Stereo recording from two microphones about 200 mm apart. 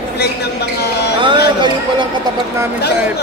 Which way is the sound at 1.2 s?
25° right (ahead or behind).